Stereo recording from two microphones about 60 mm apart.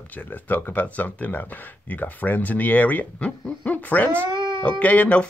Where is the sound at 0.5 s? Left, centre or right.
Left.